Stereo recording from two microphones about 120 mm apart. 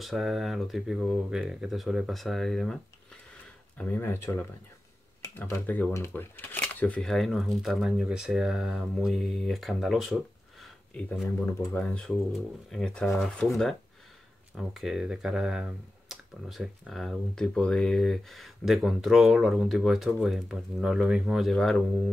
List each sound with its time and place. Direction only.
0.0 s speech: centre (ahead or behind)
11.2 s speech: 20° left (ahead or behind)
11.8 s speech: 10° left (ahead or behind)